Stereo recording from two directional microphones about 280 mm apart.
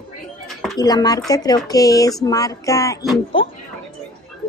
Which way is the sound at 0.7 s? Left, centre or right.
Centre.